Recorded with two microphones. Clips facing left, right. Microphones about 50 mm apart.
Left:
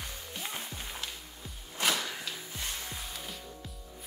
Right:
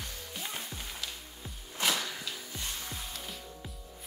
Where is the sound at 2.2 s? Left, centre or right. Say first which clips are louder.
Left 1 dB; left.